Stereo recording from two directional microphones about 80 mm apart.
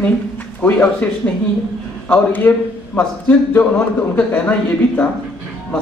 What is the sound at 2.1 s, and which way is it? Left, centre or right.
A man's voice, left.